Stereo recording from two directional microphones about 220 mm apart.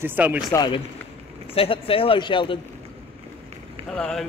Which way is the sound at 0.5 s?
20° left (ahead or behind).